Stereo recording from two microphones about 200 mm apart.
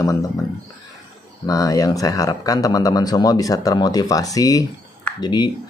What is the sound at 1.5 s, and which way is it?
Speech, 15° left (ahead or behind).